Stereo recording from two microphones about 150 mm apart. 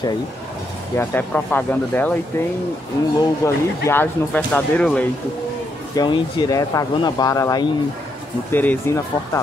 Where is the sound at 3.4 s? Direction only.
20° left (ahead or behind).